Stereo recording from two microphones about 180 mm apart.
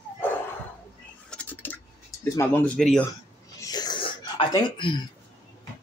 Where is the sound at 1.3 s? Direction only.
10° left (ahead or behind).